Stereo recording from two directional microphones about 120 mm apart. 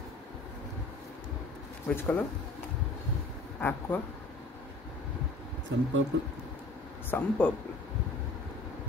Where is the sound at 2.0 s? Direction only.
15° left (ahead or behind).